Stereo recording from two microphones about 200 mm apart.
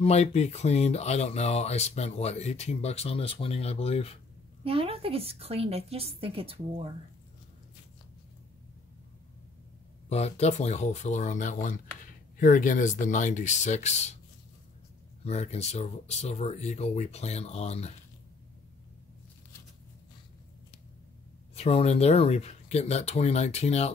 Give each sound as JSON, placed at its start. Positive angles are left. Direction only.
{"t": 0.0, "sound": "speech", "side_deg": 35}
{"t": 4.6, "sound": "a woman's voice", "side_deg": -30}
{"t": 10.0, "sound": "speech", "side_deg": 30}
{"t": 15.2, "sound": "speech", "side_deg": 30}
{"t": 21.5, "sound": "speech", "side_deg": 30}